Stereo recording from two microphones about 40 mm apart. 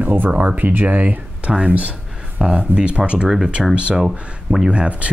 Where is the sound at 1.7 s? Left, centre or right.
Right.